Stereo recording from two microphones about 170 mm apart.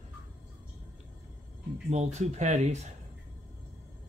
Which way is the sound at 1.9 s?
40° right (ahead or behind).